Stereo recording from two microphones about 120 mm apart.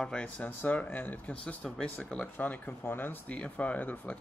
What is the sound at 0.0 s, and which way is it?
Speech, 10° left (ahead or behind).